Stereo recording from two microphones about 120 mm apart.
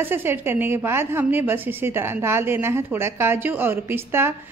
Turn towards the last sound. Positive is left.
turn(degrees=-20)  # may be behind; listen again after turning